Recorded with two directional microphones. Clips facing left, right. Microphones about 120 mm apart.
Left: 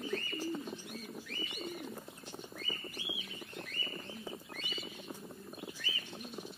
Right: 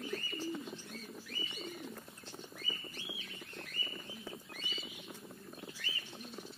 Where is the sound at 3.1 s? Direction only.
15° left (ahead or behind).